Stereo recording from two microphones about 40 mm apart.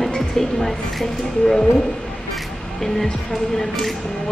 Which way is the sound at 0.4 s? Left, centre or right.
Centre.